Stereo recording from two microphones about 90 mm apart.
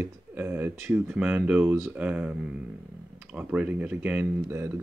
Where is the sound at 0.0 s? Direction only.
25° right (ahead or behind).